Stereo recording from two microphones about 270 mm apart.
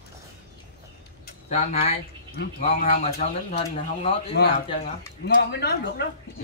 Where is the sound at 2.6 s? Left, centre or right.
Left.